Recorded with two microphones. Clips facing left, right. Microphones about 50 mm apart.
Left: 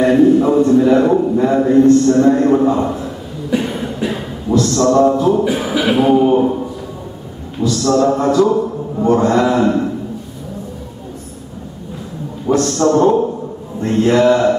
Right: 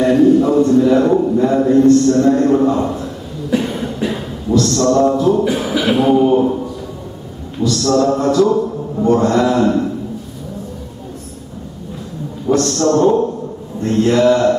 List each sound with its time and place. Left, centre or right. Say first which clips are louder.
0.0 s a man's voice: even; centre
12.4 s a man's voice: left 1 dB; centre